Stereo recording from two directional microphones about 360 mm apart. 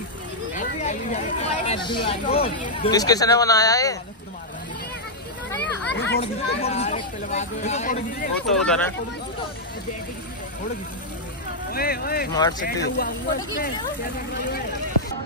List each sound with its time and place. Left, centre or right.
0.6 s speech: centre
5.6 s a sound: left
6.2 s speech: centre
8.6 s speech: centre
11.7 s speech: left
12.4 s speech: centre
12.8 s speech: left